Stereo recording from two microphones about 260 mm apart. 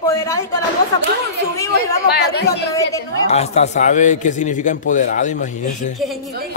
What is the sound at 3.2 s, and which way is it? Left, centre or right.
A man's voice, left.